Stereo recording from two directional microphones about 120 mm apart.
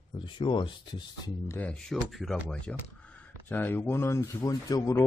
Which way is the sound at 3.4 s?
15° left (ahead or behind).